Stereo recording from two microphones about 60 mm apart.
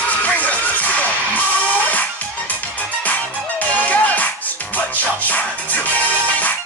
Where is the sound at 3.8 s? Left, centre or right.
Left.